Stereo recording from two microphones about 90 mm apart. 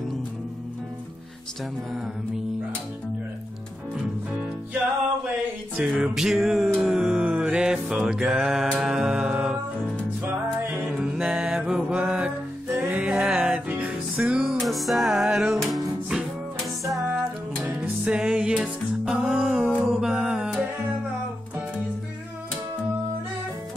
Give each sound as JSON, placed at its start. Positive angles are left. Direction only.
{"t": 5.8, "sound": "music", "side_deg": -5}
{"t": 10.2, "sound": "music", "side_deg": -20}
{"t": 14.6, "sound": "music", "side_deg": 0}
{"t": 17.1, "sound": "music", "side_deg": -20}